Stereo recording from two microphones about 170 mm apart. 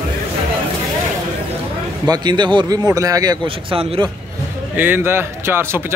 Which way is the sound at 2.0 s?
25° right (ahead or behind).